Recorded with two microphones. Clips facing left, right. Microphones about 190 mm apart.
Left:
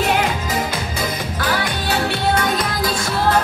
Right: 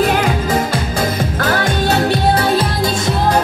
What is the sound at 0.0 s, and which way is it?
Music, 50° right (ahead or behind).